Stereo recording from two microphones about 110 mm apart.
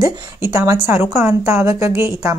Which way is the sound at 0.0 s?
25° right (ahead or behind).